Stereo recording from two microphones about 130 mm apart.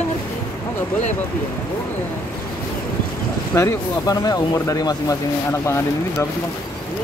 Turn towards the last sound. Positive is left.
turn(degrees=20)  # may be behind; listen again after turning